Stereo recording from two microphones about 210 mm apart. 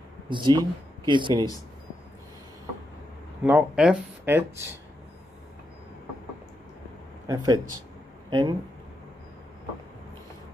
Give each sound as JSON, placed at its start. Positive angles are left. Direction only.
{"t": 0.3, "sound": "speech", "side_deg": -20}
{"t": 3.4, "sound": "speech", "side_deg": -5}
{"t": 7.2, "sound": "speech", "side_deg": -20}